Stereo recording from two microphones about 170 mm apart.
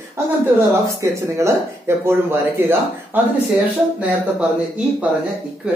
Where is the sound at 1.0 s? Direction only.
20° right (ahead or behind).